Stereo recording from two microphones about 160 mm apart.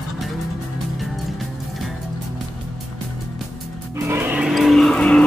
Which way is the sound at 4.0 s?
15° right (ahead or behind).